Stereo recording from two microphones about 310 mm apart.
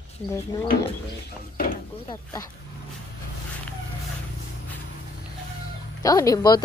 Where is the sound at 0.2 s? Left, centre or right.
Centre.